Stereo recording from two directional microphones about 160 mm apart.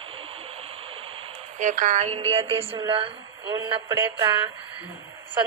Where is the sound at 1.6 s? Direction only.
50° right (ahead or behind).